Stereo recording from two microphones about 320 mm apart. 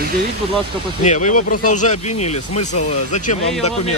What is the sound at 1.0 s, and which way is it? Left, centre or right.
Speech, left.